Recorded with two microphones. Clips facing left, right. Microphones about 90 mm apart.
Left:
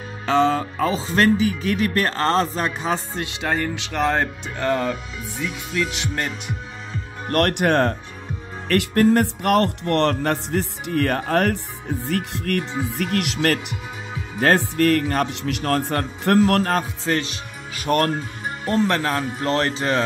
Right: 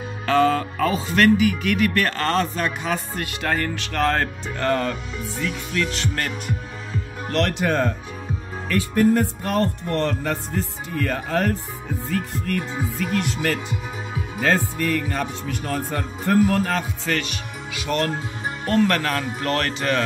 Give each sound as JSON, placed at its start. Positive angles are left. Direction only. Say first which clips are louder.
{"t": 0.3, "sound": "speech", "louder": "even", "side_deg": 20}
{"t": 7.2, "sound": "speech", "louder": "left 3 dB", "side_deg": 50}
{"t": 8.6, "sound": "music", "louder": "left 2 dB", "side_deg": 70}
{"t": 14.4, "sound": "music", "louder": "left 4 dB", "side_deg": 65}
{"t": 16.6, "sound": "music", "louder": "left 2 dB", "side_deg": 40}
{"t": 17.1, "sound": "speech", "louder": "left 2 dB", "side_deg": 30}
{"t": 17.7, "sound": "music", "louder": "left 4 dB", "side_deg": 45}
{"t": 18.7, "sound": "speech", "louder": "even", "side_deg": 20}